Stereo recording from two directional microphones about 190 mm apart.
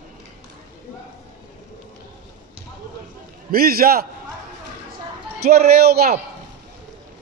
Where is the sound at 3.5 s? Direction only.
50° right (ahead or behind).